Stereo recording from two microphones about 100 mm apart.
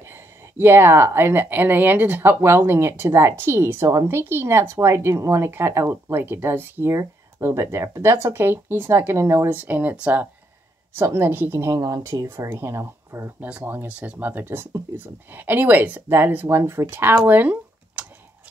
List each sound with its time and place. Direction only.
0.1 s speech: 25° right (ahead or behind)
9.6 s speech: 15° right (ahead or behind)
11.0 s speech: 25° right (ahead or behind)
13.4 s speech: 15° right (ahead or behind)
17.3 s a sound: 15° right (ahead or behind)